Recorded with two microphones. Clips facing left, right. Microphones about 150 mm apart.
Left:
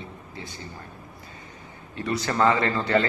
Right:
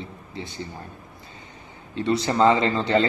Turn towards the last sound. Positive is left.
turn(degrees=-20)  # may be behind; listen again after turning